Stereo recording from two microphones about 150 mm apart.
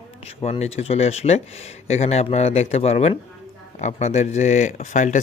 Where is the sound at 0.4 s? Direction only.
45° left (ahead or behind).